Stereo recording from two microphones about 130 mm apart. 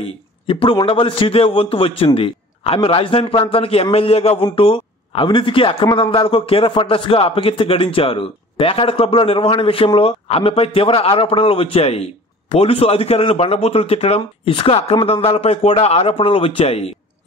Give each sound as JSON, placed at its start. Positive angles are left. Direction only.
{"t": 0.0, "sound": "a man's voice", "side_deg": 45}